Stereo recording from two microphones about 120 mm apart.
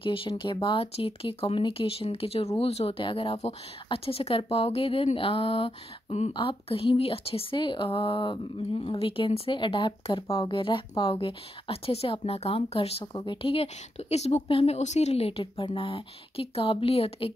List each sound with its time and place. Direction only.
0.0 s speech: 50° left (ahead or behind)
6.3 s speech: 50° left (ahead or behind)
13.0 s speech: 40° left (ahead or behind); by 14.8 s 55° left (ahead or behind)
14.8 s speech: 70° left (ahead or behind); by 17.3 s 55° left (ahead or behind)